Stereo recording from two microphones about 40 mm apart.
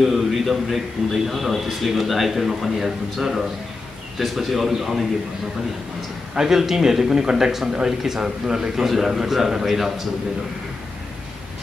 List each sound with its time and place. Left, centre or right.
0.0 s a man's voice: centre
6.3 s speech: centre
8.8 s speech: centre